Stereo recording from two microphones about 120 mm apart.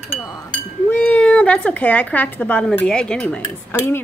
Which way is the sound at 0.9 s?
10° left (ahead or behind).